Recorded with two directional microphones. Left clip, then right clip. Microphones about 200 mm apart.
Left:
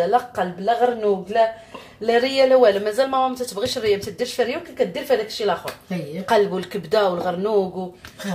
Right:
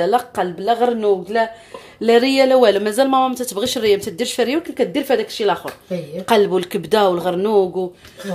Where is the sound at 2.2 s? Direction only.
45° right (ahead or behind).